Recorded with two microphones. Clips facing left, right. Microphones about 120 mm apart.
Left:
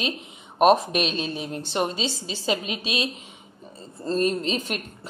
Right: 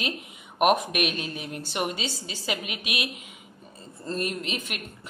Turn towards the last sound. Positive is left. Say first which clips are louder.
# left 6 dB
turn(degrees=35)  # may be behind; listen again after turning